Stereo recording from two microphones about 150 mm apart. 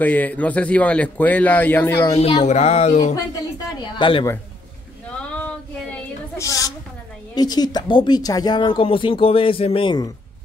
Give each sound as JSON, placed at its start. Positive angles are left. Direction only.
{"t": 0.0, "sound": "a man's voice", "side_deg": 10}
{"t": 2.4, "sound": "speech", "side_deg": 45}
{"t": 3.8, "sound": "a woman's voice", "side_deg": 30}
{"t": 5.3, "sound": "child singing", "side_deg": 10}
{"t": 7.3, "sound": "speech", "side_deg": 25}